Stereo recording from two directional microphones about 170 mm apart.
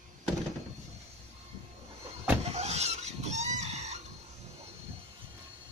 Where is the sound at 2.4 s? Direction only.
40° right (ahead or behind).